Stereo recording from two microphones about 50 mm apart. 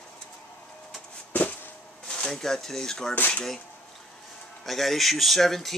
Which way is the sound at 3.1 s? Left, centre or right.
Left.